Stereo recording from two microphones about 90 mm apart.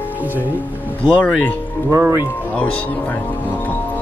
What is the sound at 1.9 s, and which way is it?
Music, 30° right (ahead or behind).